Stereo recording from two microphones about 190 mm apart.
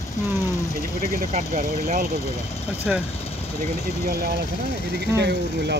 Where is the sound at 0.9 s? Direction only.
45° right (ahead or behind).